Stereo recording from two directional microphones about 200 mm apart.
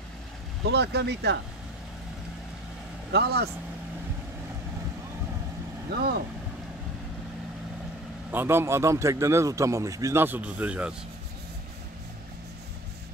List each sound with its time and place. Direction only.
0.7 s speech: 60° right (ahead or behind)
3.1 s speech: 55° right (ahead or behind)
5.9 s speech: 50° right (ahead or behind)
8.3 s a man's voice: 10° right (ahead or behind)